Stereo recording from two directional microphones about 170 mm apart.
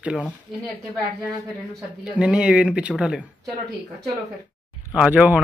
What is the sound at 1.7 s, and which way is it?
Speech, 5° right (ahead or behind).